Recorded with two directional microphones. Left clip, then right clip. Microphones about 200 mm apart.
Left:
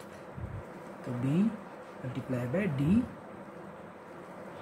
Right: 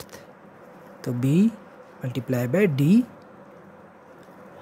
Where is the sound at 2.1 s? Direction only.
55° right (ahead or behind).